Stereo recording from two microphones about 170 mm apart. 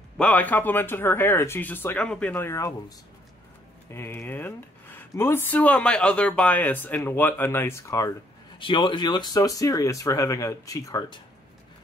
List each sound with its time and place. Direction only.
0.2 s speech: 10° left (ahead or behind)
3.9 s speech: 15° left (ahead or behind)
8.5 s speech: 30° left (ahead or behind)